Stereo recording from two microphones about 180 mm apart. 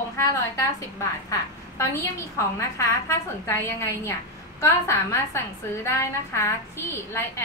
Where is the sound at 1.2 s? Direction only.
15° left (ahead or behind).